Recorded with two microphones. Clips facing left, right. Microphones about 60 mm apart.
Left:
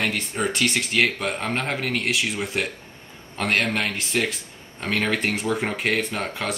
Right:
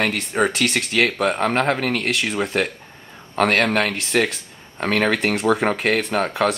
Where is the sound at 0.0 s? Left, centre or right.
Right.